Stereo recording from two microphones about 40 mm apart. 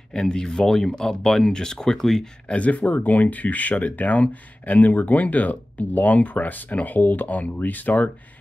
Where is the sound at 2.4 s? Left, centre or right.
Left.